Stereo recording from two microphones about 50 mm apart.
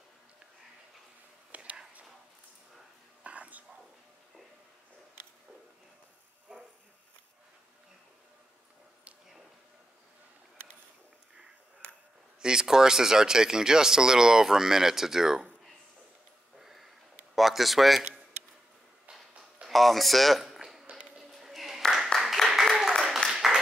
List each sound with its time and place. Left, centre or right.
1.5 s whispering: right
3.3 s whispering: right
6.5 s a sound: centre
12.4 s speech: centre
16.5 s sniff: centre
17.4 s speech: centre
19.7 s speech: centre
21.2 s music: centre
21.9 s a sound: centre